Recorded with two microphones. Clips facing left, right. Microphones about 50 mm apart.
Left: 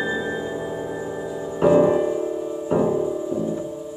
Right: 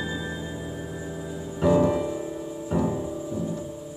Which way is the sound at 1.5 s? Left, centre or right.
Left.